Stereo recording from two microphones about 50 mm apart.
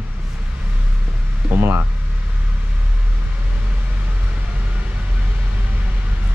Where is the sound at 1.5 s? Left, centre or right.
Right.